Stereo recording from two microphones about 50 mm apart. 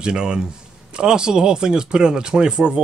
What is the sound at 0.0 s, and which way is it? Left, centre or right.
Speech, centre.